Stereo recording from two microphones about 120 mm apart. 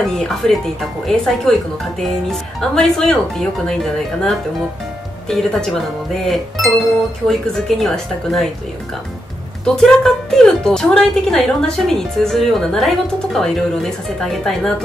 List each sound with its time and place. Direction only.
0.0 s speech: 5° left (ahead or behind)
2.7 s speech: 5° left (ahead or behind)
9.8 s speech: 5° left (ahead or behind)